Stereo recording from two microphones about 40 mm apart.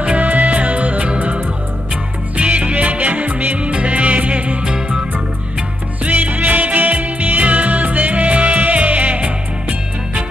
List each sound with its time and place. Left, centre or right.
0.2 s music: right
3.5 s music: right
6.0 s music: right